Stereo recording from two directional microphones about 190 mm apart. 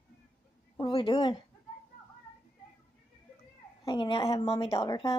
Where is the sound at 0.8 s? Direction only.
25° left (ahead or behind).